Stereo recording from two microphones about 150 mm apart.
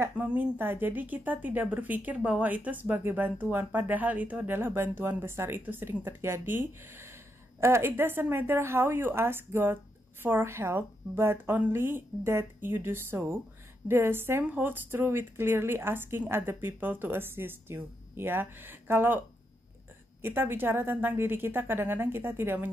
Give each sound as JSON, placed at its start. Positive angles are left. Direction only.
{"t": 0.0, "sound": "speech", "side_deg": -10}